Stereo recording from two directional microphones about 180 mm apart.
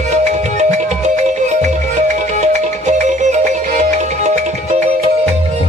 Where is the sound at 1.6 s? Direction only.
40° right (ahead or behind).